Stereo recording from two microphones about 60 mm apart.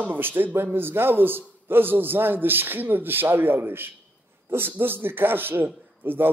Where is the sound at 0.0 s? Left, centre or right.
Right.